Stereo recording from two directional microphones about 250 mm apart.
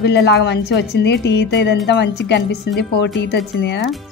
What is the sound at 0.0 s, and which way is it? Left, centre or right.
A woman's voice, left.